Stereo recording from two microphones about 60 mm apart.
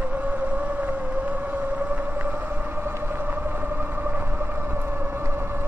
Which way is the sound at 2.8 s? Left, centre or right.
Right.